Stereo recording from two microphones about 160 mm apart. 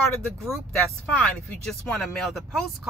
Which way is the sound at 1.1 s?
5° left (ahead or behind).